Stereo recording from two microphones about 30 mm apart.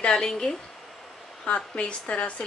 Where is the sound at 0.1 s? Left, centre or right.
Left.